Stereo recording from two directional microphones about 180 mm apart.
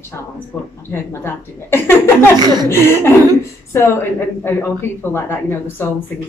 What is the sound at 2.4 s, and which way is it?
Speech, 20° right (ahead or behind).